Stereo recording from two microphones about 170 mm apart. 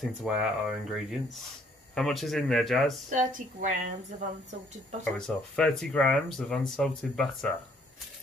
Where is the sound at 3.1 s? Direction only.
50° right (ahead or behind).